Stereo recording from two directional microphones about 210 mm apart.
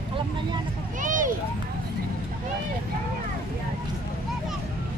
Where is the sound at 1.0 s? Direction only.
40° right (ahead or behind).